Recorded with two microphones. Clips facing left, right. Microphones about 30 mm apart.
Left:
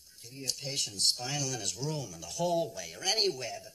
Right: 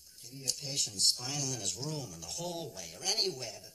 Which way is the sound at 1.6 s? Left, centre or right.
Left.